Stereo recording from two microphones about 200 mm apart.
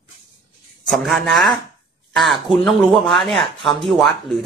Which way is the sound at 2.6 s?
Centre (ahead or behind).